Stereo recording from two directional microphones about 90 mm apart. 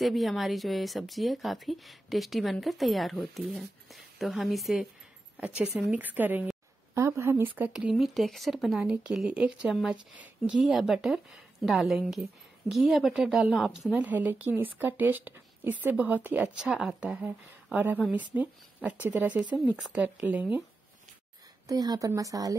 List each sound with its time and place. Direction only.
0.0 s speech: centre (ahead or behind)
5.4 s speech: 10° right (ahead or behind)
7.7 s speech: 5° right (ahead or behind)
10.6 s speech: centre (ahead or behind)
13.9 s speech: 15° right (ahead or behind)
16.6 s speech: 5° right (ahead or behind)
17.2 s speech: 15° right (ahead or behind)
21.6 s speech: 45° right (ahead or behind)